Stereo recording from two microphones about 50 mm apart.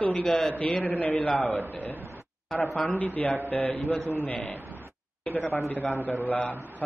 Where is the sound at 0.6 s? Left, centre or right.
Left.